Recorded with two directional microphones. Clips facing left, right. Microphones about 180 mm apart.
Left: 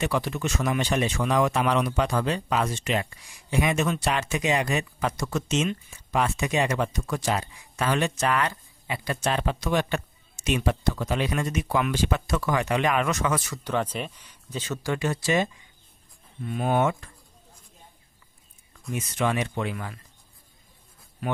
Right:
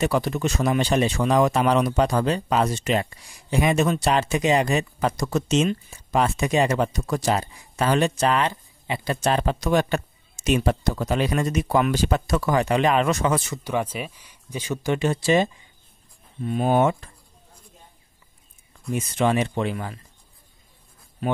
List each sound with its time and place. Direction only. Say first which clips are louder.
0.0 s speech: right 4 dB; 40° right (ahead or behind)
13.7 s speech: even; 10° right (ahead or behind); by 17.1 s 30° right (ahead or behind)
18.9 s speech: right 5 dB; 30° right (ahead or behind)